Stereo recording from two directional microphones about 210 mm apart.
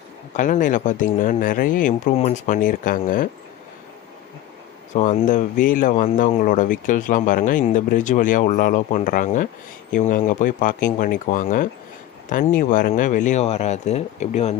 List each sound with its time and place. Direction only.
0.4 s speech: 40° left (ahead or behind)
4.9 s speech: 35° left (ahead or behind)